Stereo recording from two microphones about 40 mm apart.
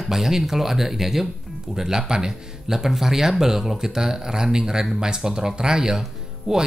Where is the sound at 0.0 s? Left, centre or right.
Centre.